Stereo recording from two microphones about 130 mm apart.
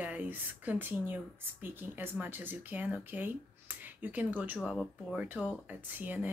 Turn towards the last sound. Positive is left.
turn(degrees=-15)  # may be behind; listen again after turning